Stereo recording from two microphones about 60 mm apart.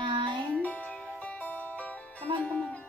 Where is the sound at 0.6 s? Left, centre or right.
Left.